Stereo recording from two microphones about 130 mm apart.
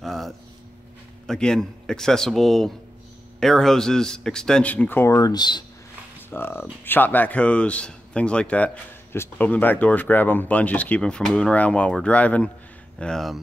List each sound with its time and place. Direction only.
0.0 s a sound: centre (ahead or behind)
1.2 s speech: 5° left (ahead or behind); by 5.7 s 35° left (ahead or behind)
6.3 s speech: 15° left (ahead or behind); by 13.4 s centre (ahead or behind)